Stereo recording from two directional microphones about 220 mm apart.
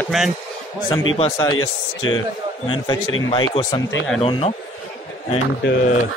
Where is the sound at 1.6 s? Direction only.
65° left (ahead or behind).